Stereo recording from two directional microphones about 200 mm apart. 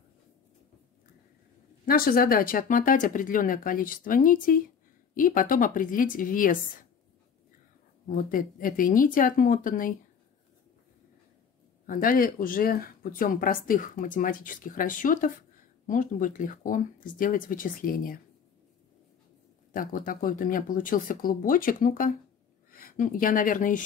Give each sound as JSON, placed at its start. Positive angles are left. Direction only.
{"t": 1.9, "sound": "speech", "side_deg": 45}
{"t": 8.1, "sound": "speech", "side_deg": 45}
{"t": 11.8, "sound": "speech", "side_deg": 45}
{"t": 19.7, "sound": "speech", "side_deg": 45}